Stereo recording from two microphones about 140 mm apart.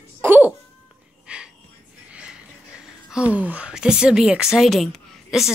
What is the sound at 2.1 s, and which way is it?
Speech, 5° right (ahead or behind).